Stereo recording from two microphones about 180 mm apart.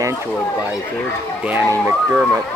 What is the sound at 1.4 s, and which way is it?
Speech, 10° right (ahead or behind).